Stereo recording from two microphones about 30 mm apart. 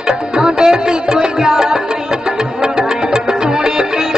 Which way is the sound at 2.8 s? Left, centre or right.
Centre.